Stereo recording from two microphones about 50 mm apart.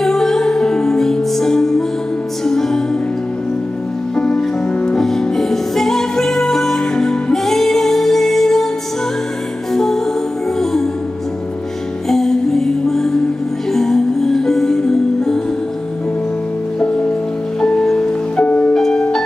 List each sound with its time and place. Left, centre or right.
0.0 s music: centre
4.1 s music: centre
4.9 s music: centre
9.8 s music: centre
12.1 s music: centre
17.6 s music: centre
18.8 s music: centre